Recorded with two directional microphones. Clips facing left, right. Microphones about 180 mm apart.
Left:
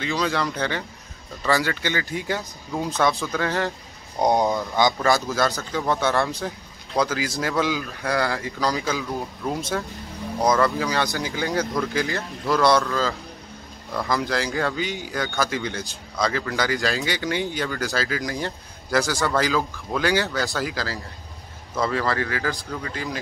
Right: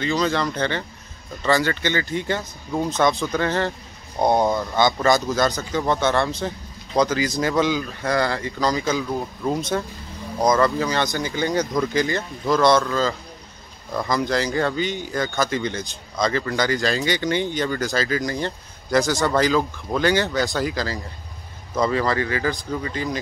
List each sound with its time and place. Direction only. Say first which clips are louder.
0.0 s speech: right 3 dB; 5° left (ahead or behind)
4.2 s speech: right 1 dB; 15° left (ahead or behind)
5.5 s speech: right 3 dB; 15° right (ahead or behind)
5.8 s speech: right 2 dB; 5° left (ahead or behind)
14.0 s speech: right 2 dB; 5° left (ahead or behind)